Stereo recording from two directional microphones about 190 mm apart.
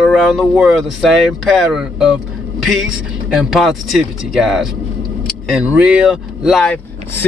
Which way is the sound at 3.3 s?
Centre (ahead or behind).